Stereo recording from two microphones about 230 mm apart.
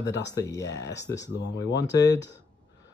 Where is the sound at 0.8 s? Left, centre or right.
Left.